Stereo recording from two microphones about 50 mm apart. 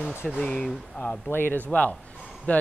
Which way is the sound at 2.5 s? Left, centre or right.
Left.